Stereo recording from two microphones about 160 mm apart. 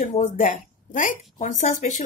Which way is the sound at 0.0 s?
55° left (ahead or behind).